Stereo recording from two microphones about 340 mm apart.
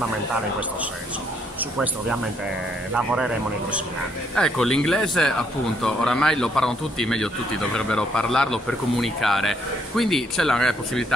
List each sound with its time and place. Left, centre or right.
1.6 s speech: centre
4.4 s speech: centre